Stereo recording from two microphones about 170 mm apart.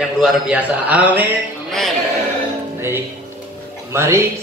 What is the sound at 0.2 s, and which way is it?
A man's voice, 5° right (ahead or behind).